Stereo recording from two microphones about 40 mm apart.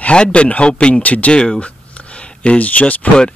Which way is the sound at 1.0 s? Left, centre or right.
Left.